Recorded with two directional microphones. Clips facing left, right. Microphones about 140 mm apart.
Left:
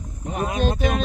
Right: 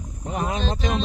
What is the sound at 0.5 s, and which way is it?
Speech, 10° left (ahead or behind).